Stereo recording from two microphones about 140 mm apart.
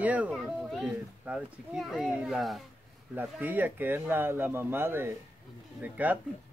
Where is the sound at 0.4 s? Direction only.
Centre (ahead or behind).